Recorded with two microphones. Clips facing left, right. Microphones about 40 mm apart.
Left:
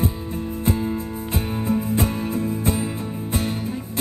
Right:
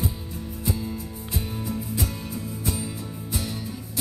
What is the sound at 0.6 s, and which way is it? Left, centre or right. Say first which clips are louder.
Music: left 6 dB; left.